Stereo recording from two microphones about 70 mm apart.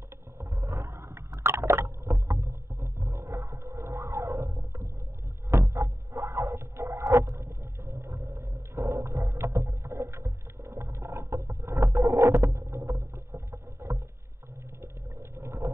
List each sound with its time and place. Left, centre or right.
0.4 s wild animals: right
1.3 s rowboat: right
5.5 s a sound: right
15.3 s boat: right